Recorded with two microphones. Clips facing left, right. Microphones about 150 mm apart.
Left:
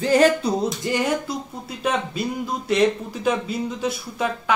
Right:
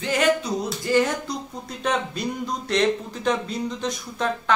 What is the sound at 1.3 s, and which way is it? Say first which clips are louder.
Speech: left 2 dB; 5° left (ahead or behind).